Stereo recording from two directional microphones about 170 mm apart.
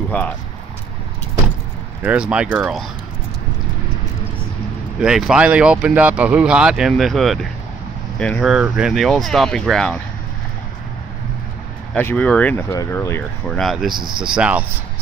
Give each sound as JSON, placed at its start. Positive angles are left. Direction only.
{"t": 2.0, "sound": "speech", "side_deg": -5}
{"t": 5.0, "sound": "speech", "side_deg": -5}
{"t": 11.9, "sound": "speech", "side_deg": 10}
{"t": 13.6, "sound": "speech", "side_deg": 0}
{"t": 13.9, "sound": "speech", "side_deg": -25}
{"t": 14.2, "sound": "speech", "side_deg": -5}